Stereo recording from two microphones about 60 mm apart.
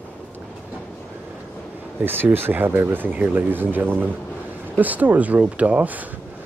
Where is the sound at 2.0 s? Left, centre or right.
Right.